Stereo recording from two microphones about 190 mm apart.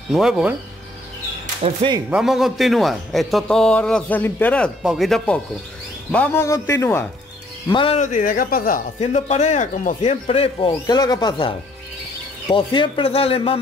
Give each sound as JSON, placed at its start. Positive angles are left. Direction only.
{"t": 0.1, "sound": "a man's voice", "side_deg": 0}
{"t": 1.6, "sound": "speech", "side_deg": -30}
{"t": 2.0, "sound": "a man's voice", "side_deg": -5}
{"t": 7.7, "sound": "speech", "side_deg": 30}
{"t": 9.0, "sound": "speech", "side_deg": 35}